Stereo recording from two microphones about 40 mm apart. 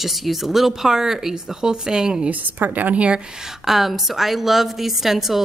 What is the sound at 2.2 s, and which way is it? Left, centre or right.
Speech, right.